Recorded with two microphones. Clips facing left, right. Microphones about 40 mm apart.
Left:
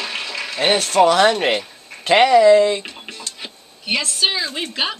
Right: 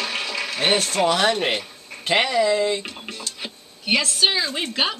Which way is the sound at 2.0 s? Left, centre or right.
Left.